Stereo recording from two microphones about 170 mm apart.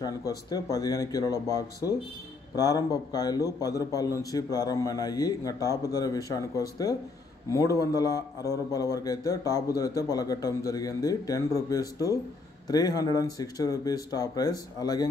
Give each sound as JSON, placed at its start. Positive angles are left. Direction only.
{"t": 0.0, "sound": "a man's voice", "side_deg": 20}
{"t": 2.5, "sound": "a man's voice", "side_deg": 20}